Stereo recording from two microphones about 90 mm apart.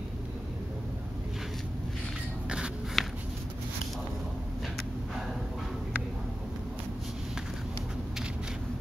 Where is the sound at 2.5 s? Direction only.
10° right (ahead or behind).